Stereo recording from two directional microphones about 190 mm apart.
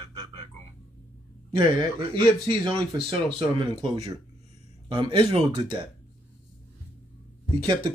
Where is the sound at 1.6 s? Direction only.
25° right (ahead or behind).